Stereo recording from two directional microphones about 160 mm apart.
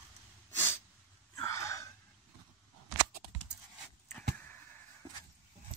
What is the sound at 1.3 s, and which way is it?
Gasp, 20° left (ahead or behind).